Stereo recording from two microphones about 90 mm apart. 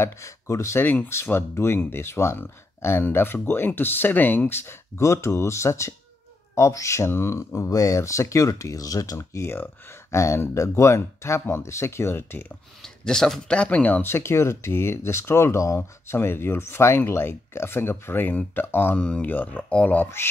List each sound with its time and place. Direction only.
0.0 s speech: 35° left (ahead or behind)
0.8 s speech: 25° left (ahead or behind)
12.8 s speech: 5° left (ahead or behind); by 18.9 s 25° left (ahead or behind)
18.9 s speech: 10° left (ahead or behind)